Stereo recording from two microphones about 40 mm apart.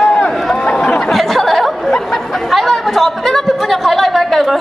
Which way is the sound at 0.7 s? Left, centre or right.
Left.